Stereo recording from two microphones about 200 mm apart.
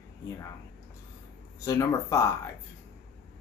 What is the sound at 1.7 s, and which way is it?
Speech, 15° left (ahead or behind).